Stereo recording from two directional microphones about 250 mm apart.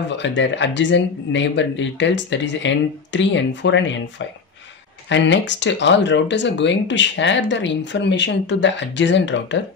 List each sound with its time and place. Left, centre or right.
0.1 s speech: left
5.1 s speech: left